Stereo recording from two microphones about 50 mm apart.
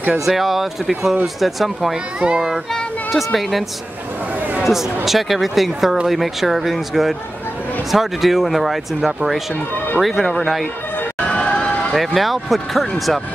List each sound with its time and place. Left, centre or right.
0.2 s speech: centre
2.1 s a child's voice: centre
2.7 s speech: centre
4.4 s a sound: right
4.6 s speech: centre
11.2 s run: left
11.9 s speech: centre